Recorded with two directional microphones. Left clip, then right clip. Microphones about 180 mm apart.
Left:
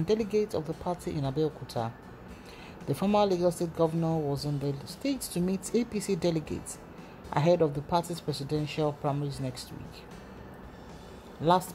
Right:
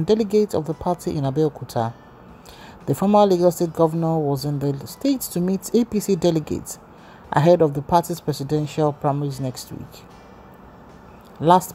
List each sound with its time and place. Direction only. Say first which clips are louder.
0.0 s speech: right 9 dB; 25° right (ahead or behind)
3.2 s speech: right 10 dB; 20° right (ahead or behind)